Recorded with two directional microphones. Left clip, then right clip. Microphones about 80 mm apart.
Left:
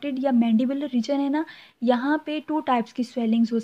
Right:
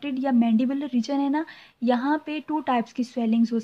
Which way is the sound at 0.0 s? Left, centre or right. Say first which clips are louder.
Left 1 dB; left.